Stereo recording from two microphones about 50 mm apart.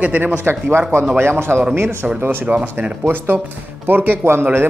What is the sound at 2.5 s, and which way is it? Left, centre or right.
Speech, right.